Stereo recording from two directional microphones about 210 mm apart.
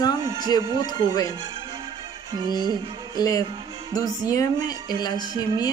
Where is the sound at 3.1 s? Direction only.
20° left (ahead or behind).